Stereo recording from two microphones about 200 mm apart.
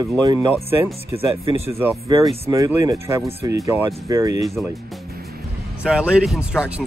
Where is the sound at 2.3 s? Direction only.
15° right (ahead or behind).